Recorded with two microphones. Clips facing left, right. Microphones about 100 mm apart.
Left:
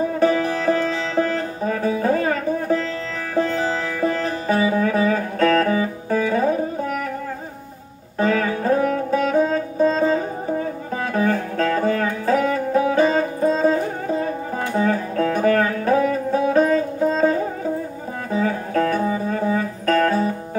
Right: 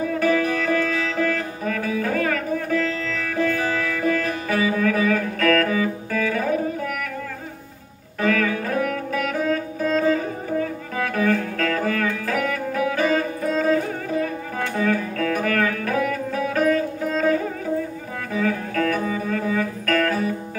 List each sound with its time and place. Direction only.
0.0 s music: 30° left (ahead or behind)
8.2 s music: 30° left (ahead or behind)